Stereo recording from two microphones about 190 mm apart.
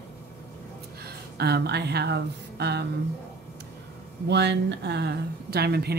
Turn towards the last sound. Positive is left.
turn(degrees=-55)  # may be behind; listen again after turning